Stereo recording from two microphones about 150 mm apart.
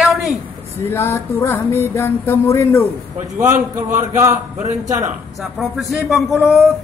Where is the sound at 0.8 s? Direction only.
15° left (ahead or behind).